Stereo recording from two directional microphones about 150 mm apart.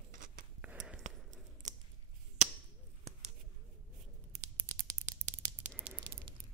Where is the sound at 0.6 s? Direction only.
5° right (ahead or behind).